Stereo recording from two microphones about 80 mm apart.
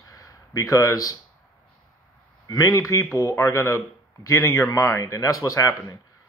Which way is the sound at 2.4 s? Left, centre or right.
Left.